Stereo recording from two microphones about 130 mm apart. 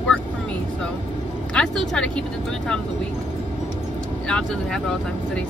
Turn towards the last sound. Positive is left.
turn(degrees=5)  # may be behind; listen again after turning